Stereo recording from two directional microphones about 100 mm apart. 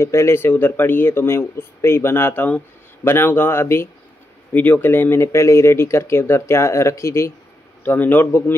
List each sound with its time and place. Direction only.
0.0 s speech: 30° left (ahead or behind)